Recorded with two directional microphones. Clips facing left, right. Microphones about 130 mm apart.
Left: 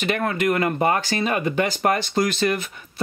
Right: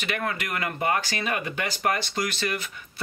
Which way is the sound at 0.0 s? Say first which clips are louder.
Left 8 dB; 35° left (ahead or behind).